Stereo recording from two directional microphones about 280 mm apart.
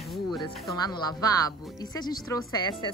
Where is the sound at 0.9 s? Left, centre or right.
Centre.